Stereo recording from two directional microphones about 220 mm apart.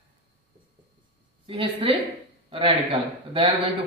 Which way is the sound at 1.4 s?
25° right (ahead or behind).